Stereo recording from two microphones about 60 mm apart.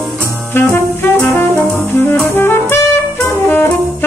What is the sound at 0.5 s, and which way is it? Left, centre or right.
Saxophone, left.